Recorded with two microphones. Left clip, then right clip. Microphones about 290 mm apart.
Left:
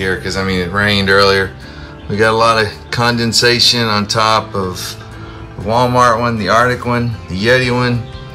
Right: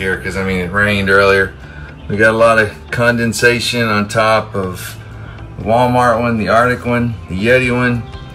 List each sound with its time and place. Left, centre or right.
0.3 s speech: centre
5.7 s speech: centre